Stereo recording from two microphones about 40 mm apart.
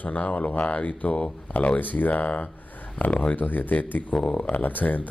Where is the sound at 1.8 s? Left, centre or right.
Left.